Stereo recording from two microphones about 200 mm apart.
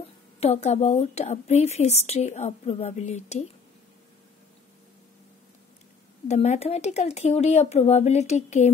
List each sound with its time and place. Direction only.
0.4 s a woman's voice: 35° left (ahead or behind)
6.2 s a woman's voice: 35° left (ahead or behind)